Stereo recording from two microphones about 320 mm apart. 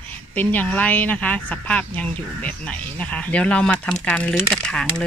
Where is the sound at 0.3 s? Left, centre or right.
Centre.